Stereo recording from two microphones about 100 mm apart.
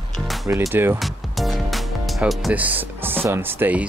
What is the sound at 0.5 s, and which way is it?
Speech, 20° right (ahead or behind).